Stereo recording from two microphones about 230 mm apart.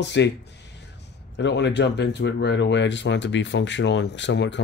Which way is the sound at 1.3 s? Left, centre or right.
Left.